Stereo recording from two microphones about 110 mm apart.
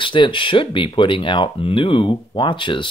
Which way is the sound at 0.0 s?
50° left (ahead or behind).